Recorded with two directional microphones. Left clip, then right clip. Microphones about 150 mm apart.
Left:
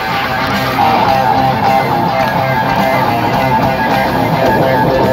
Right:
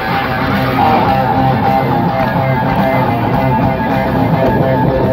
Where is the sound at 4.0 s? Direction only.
70° left (ahead or behind).